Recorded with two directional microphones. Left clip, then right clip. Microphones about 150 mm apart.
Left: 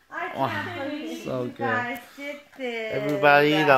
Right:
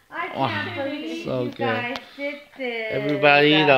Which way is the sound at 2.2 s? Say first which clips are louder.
Right 4 dB; 55° left (ahead or behind).